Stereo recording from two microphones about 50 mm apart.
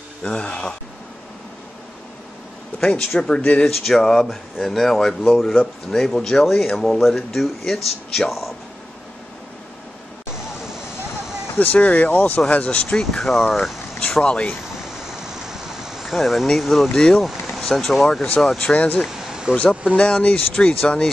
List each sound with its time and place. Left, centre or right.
0.2 s speech: centre
2.8 s speech: centre
3.3 s speech: left
3.6 s speech: centre
11.6 s speech: left
12.1 s speech: left
12.4 s speech: left
12.9 s speech: centre
13.9 s speech: centre
15.2 s a sound: centre
16.9 s speech: centre
18.8 s speech: left
19.0 s a sound: centre
20.0 s speech: left